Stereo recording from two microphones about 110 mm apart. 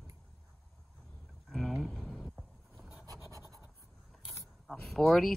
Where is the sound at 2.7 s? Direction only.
15° right (ahead or behind).